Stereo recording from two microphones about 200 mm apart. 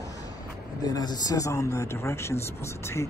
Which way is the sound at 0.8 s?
20° left (ahead or behind).